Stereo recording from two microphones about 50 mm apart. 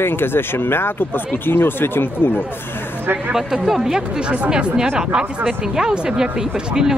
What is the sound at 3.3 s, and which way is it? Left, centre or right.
Speech, centre.